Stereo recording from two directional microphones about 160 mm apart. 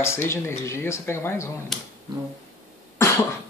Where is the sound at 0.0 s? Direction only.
15° left (ahead or behind).